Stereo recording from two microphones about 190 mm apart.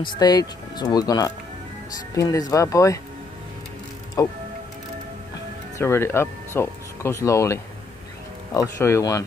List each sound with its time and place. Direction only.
0.0 s speech: 25° left (ahead or behind)
4.2 s speech: 20° left (ahead or behind)
5.8 s speech: 15° left (ahead or behind)